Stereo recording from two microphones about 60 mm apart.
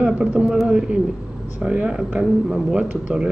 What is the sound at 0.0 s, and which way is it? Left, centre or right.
Speech, centre.